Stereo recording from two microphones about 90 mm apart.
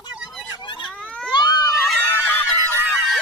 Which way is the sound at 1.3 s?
60° left (ahead or behind).